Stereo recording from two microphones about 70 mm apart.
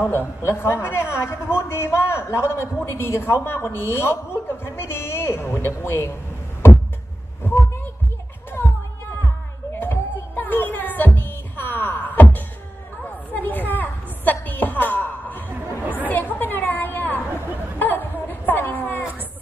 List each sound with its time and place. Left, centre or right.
0.1 s a man's voice: left
7.4 s heart sounds: left
9.8 s music: left
13.0 s a sound: left
16.1 s chatter: left
17.7 s a sound: left